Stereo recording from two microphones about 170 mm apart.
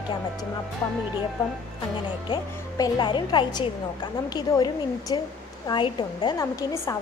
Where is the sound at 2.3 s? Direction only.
25° left (ahead or behind).